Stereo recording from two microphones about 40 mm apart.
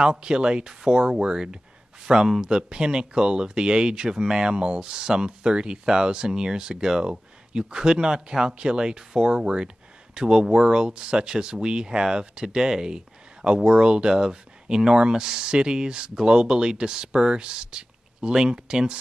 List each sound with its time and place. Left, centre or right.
0.0 s speech: right